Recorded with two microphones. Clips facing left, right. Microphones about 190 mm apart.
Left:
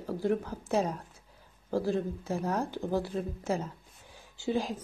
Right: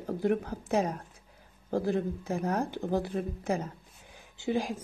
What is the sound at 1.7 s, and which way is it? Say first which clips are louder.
Speech: right 1 dB; 55° right (ahead or behind).